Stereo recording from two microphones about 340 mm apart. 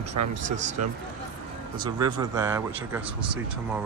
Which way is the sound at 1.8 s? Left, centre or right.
Centre.